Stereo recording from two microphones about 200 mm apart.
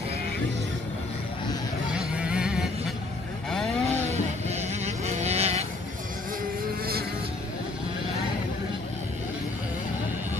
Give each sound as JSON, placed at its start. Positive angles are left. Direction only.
{"t": 1.9, "sound": "vehicle", "side_deg": -5}
{"t": 3.9, "sound": "vehicle", "side_deg": -35}
{"t": 6.6, "sound": "motorboat", "side_deg": -50}